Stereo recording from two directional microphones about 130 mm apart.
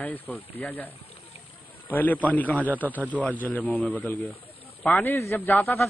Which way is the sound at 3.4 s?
10° left (ahead or behind).